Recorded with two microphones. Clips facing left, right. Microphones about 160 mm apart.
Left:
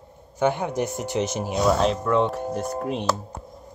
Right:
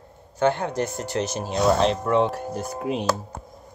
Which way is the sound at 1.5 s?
5° left (ahead or behind).